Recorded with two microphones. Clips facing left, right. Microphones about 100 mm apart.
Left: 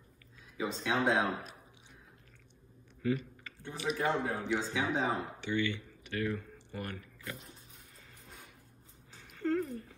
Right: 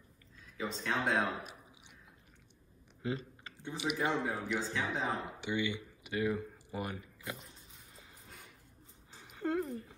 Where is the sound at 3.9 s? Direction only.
15° right (ahead or behind).